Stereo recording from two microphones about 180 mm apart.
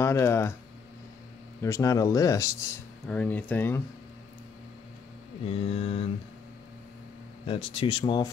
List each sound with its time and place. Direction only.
0.0 s speech: 15° left (ahead or behind)
1.6 s speech: 15° left (ahead or behind)
3.1 s speech: 10° left (ahead or behind)
5.4 s speech: 30° left (ahead or behind)
7.4 s speech: 30° left (ahead or behind)